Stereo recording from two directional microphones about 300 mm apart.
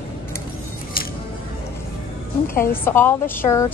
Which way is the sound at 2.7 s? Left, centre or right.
Centre.